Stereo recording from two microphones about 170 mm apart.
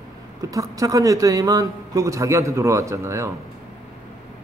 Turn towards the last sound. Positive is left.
turn(degrees=-15)  # may be behind; listen again after turning